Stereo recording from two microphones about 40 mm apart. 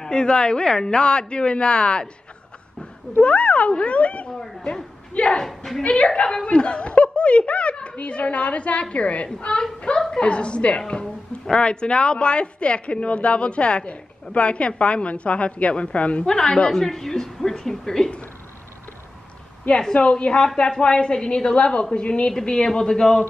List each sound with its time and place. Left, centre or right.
0.0 s speech: left
3.2 s speech: left
9.9 s a woman's voice: centre
10.2 s speech: left
16.3 s speech: centre
16.7 s a woman's voice: centre
19.9 s speech: left